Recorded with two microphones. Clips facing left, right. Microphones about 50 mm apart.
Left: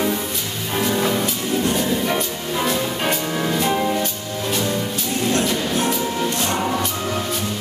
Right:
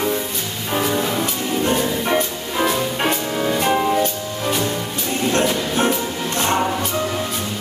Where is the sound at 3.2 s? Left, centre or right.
Centre.